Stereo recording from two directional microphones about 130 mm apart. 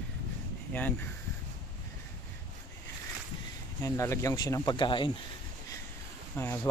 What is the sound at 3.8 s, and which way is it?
Speech, 20° left (ahead or behind).